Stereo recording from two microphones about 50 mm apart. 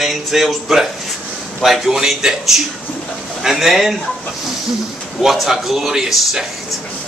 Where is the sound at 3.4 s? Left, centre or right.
Centre.